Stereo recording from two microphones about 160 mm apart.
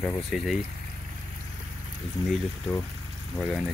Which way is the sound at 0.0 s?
Centre (ahead or behind).